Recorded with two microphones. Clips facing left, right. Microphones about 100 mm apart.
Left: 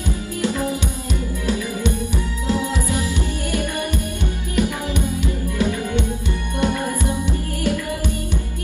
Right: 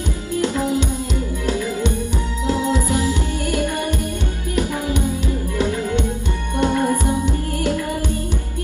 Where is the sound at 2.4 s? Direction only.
20° right (ahead or behind).